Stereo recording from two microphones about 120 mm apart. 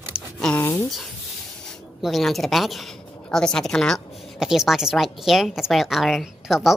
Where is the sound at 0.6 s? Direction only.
20° left (ahead or behind).